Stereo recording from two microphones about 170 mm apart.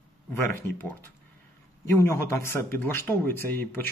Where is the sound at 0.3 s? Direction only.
15° left (ahead or behind).